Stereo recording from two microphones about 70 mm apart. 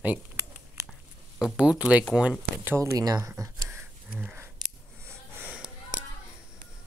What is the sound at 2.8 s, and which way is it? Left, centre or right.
Speech, right.